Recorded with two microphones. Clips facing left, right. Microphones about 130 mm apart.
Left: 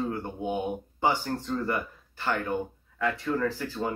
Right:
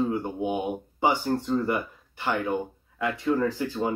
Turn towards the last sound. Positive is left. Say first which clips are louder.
# right 3 dB
turn(degrees=-15)  # may be behind; listen again after turning